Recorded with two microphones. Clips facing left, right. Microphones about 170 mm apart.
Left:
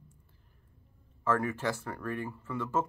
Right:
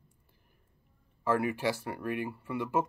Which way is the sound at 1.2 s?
10° right (ahead or behind).